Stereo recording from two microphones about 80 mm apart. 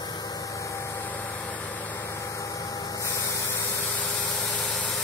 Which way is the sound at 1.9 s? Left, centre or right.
Left.